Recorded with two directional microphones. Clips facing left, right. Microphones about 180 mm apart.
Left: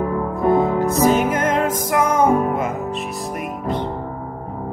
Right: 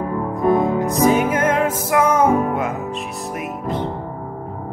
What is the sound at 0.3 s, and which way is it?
Music, 20° right (ahead or behind).